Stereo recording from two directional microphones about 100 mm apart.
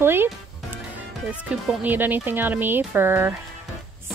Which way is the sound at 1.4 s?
15° right (ahead or behind).